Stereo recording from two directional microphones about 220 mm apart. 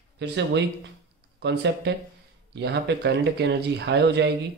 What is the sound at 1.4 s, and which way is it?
Speech, 50° right (ahead or behind).